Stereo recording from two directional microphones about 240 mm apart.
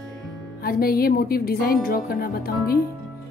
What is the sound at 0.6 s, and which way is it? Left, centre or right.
Speech, left.